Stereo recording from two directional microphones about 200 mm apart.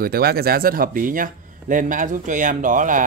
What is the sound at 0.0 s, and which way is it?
A man's voice, 50° right (ahead or behind).